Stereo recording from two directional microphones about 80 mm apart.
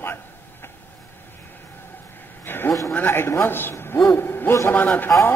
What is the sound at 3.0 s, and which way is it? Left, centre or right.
A man's voice, left.